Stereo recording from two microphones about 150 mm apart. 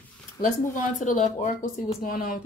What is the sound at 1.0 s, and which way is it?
Speech, 55° left (ahead or behind).